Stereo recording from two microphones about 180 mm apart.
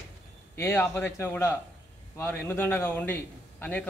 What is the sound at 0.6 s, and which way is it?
A man's voice, 15° left (ahead or behind).